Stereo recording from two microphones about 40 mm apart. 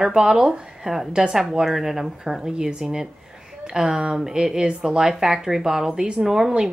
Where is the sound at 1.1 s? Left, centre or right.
Centre.